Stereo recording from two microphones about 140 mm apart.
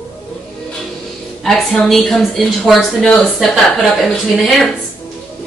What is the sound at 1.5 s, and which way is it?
Speech, centre (ahead or behind).